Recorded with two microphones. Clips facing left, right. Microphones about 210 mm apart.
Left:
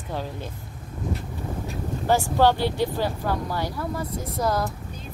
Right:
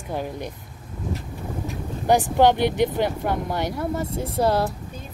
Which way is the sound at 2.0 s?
15° right (ahead or behind).